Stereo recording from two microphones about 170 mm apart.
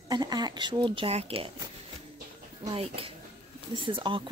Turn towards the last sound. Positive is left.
turn(degrees=-30)  # may be behind; listen again after turning